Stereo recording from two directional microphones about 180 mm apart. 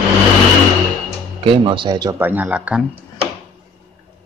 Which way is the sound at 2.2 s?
10° right (ahead or behind).